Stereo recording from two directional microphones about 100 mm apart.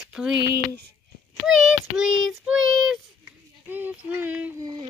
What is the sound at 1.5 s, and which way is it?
Child singing, centre (ahead or behind).